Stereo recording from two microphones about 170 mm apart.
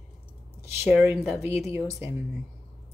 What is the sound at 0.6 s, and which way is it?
Speech, 10° right (ahead or behind).